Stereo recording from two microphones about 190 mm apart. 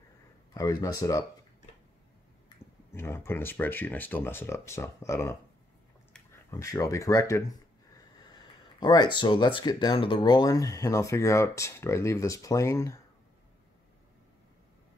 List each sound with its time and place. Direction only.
0.6 s speech: 20° left (ahead or behind)
2.9 s speech: 15° left (ahead or behind)
6.5 s speech: 15° left (ahead or behind)